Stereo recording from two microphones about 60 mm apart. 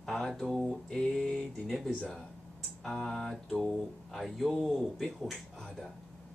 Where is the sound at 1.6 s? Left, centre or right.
Centre.